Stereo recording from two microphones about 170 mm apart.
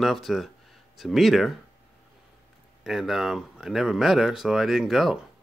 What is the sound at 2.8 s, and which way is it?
Speech, centre (ahead or behind).